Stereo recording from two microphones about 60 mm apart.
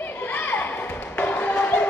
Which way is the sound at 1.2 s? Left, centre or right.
Left.